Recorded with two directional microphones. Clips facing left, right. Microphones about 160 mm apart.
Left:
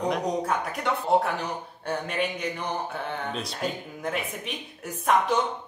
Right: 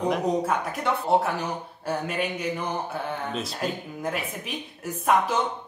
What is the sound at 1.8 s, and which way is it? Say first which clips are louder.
A man's voice: even; 5° right (ahead or behind).